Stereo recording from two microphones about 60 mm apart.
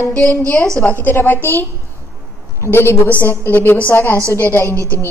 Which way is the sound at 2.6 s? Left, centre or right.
Left.